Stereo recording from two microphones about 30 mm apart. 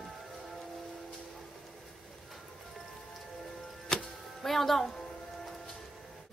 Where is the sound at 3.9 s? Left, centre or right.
Centre.